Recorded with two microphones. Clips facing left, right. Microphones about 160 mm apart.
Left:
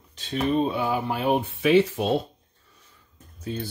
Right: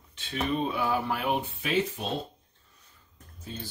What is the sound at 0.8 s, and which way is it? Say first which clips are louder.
Speech: left 3 dB; 20° left (ahead or behind).